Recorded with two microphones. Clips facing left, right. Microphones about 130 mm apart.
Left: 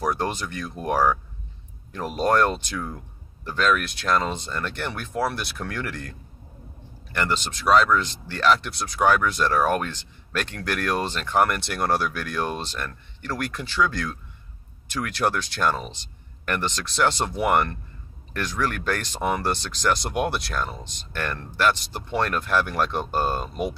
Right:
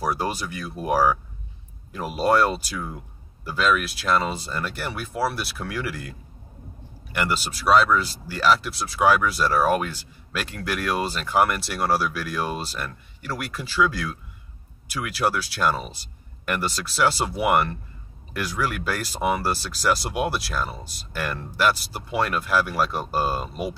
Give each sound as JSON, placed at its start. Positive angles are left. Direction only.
{"t": 0.0, "sound": "speech", "side_deg": -10}